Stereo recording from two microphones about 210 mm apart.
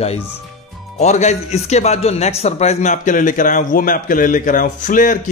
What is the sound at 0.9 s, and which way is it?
A man's voice, 35° left (ahead or behind).